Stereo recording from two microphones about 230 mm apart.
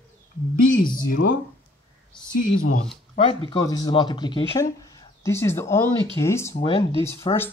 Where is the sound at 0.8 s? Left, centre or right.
Centre.